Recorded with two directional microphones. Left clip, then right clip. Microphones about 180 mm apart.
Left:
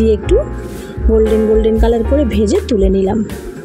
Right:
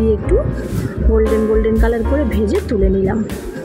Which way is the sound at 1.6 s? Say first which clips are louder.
Left 4 dB; 40° left (ahead or behind).